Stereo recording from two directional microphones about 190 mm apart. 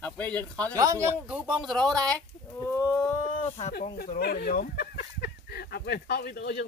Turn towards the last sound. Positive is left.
turn(degrees=60)  # may be behind; listen again after turning